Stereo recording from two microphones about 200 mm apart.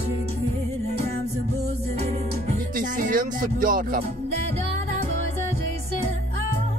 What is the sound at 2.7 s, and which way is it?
Speech, 45° right (ahead or behind).